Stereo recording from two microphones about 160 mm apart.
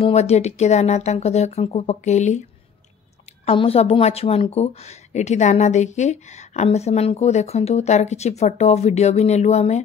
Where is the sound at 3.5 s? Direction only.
35° left (ahead or behind).